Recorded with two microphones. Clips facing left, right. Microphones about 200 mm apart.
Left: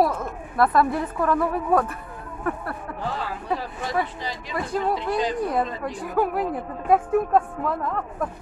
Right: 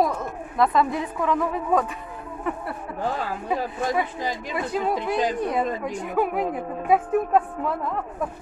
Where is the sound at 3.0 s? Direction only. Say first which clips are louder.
Right 4 dB; 45° right (ahead or behind).